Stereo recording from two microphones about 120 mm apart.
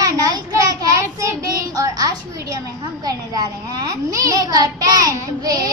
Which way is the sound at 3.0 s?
30° right (ahead or behind).